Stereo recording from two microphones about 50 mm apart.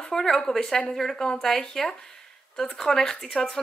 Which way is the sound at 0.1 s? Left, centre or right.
Centre.